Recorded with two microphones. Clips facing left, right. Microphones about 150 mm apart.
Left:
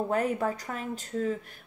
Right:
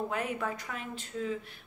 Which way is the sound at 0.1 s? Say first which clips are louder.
Left 6 dB; 40° left (ahead or behind).